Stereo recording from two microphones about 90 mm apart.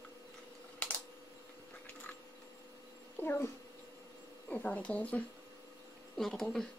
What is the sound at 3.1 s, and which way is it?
Speech, 20° left (ahead or behind).